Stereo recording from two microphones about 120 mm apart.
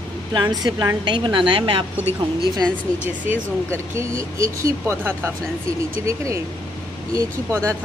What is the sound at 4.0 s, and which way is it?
Speech, 25° right (ahead or behind).